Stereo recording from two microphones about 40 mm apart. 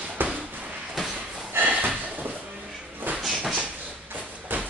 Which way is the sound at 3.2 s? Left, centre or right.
Centre.